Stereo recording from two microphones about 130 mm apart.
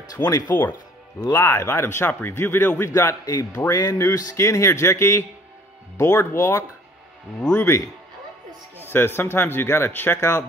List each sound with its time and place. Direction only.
0.1 s speech: 30° left (ahead or behind)
7.3 s a man's voice: 5° left (ahead or behind)
8.8 s a man's voice: 15° left (ahead or behind)